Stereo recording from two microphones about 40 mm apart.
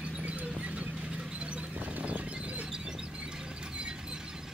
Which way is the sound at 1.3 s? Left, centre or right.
Right.